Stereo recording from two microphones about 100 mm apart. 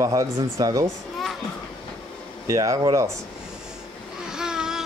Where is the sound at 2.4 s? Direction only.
35° right (ahead or behind).